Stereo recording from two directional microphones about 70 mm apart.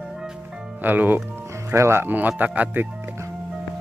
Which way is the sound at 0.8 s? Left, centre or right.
Right.